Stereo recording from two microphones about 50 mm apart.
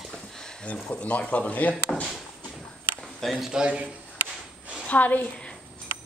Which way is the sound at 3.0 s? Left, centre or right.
Centre.